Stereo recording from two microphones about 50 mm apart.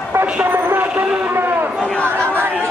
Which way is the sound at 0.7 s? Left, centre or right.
Right.